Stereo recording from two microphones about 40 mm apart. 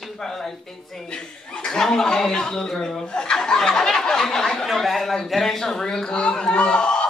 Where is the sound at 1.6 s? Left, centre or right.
Centre.